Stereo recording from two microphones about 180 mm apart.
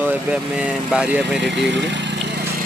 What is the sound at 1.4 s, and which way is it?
Speech, 75° right (ahead or behind).